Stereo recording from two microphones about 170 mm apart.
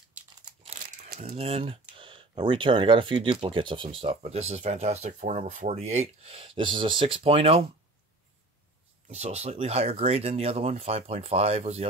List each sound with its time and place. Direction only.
1.0 s a sound: 65° right (ahead or behind)
1.3 s speech: 35° right (ahead or behind)
9.1 s speech: 40° right (ahead or behind)